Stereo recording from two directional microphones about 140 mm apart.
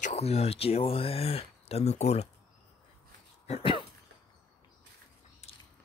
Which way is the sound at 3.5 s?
40° left (ahead or behind).